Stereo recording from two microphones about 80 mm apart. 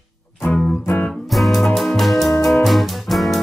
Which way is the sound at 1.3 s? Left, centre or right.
Centre.